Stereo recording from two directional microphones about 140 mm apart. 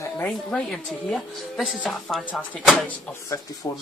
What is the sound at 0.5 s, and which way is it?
A woman's voice, 5° left (ahead or behind).